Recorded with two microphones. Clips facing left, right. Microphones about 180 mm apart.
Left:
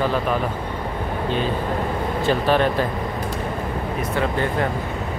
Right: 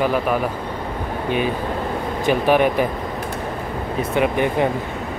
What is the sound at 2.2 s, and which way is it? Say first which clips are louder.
Speech: right 3 dB; 15° right (ahead or behind).